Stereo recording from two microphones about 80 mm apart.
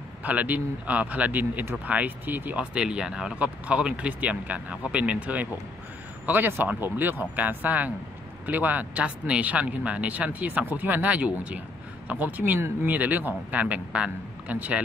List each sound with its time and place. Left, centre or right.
0.2 s speech: right